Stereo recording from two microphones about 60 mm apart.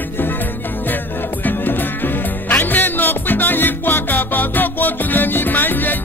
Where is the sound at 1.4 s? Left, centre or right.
Left.